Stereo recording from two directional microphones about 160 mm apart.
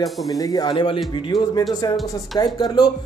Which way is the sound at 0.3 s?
25° left (ahead or behind).